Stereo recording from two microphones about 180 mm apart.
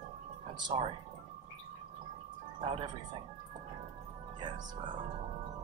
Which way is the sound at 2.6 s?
30° right (ahead or behind).